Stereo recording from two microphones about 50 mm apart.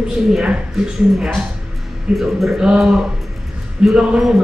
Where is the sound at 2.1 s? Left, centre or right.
Centre.